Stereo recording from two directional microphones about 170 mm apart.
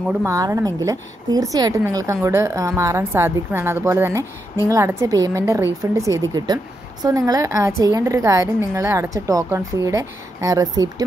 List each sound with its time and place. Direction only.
0.2 s a woman's voice: 20° right (ahead or behind)